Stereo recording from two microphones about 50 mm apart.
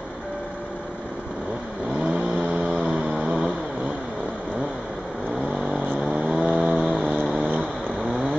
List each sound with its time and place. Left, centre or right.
2.0 s vehicle: right
5.9 s vehicle: centre
7.3 s a sound: right